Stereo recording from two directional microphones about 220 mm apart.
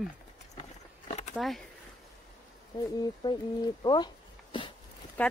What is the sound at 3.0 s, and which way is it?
Speech, 20° left (ahead or behind).